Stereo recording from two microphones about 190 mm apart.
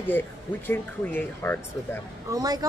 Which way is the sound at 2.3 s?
20° right (ahead or behind).